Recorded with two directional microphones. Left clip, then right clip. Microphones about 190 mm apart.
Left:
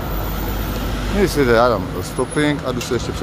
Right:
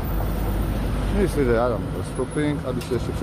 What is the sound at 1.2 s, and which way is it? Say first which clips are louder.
Speech: left 7 dB; 25° left (ahead or behind).